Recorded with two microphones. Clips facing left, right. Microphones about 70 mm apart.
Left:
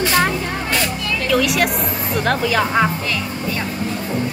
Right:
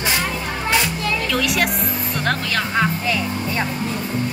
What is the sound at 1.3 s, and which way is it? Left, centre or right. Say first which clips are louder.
Speech: left 6 dB; centre.